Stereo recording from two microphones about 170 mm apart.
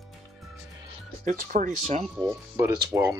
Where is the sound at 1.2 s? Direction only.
50° right (ahead or behind).